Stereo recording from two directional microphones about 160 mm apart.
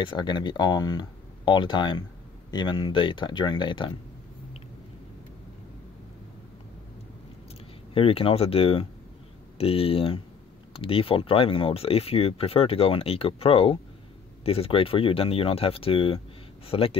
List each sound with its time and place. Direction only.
0.0 s speech: 30° left (ahead or behind)
7.9 s speech: 35° left (ahead or behind)